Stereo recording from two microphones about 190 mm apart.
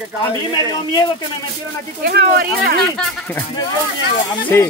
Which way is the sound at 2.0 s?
55° right (ahead or behind).